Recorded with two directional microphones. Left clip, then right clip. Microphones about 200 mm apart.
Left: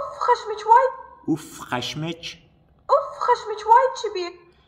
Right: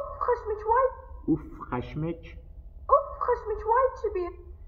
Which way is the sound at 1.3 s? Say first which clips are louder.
Left 3 dB; 25° left (ahead or behind).